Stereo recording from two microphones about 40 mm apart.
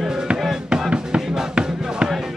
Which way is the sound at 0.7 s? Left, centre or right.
Right.